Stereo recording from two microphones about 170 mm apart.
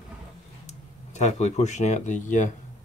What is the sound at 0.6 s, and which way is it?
Speech, 45° left (ahead or behind).